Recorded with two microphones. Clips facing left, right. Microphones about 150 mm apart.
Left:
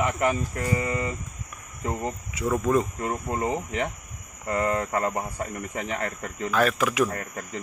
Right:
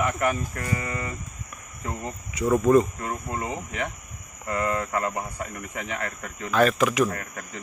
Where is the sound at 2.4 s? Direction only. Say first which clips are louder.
Right 4 dB; 5° right (ahead or behind).